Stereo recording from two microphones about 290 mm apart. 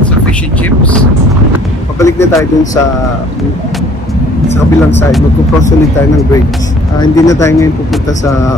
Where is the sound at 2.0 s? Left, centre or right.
Centre.